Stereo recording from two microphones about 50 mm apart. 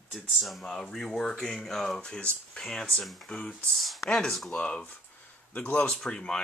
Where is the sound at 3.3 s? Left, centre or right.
Left.